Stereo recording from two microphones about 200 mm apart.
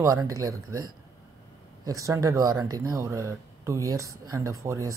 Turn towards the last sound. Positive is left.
turn(degrees=-15)  # may be behind; listen again after turning